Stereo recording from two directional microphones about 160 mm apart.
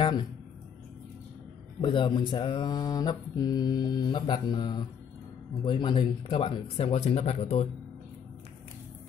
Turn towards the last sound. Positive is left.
turn(degrees=40)  # may be behind; listen again after turning